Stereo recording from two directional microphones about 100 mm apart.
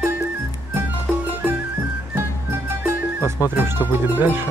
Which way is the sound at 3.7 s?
20° right (ahead or behind).